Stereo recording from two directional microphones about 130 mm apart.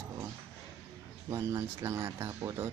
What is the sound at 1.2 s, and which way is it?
Speech, 25° right (ahead or behind).